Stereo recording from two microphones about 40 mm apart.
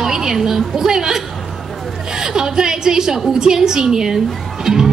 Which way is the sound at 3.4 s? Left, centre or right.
Centre.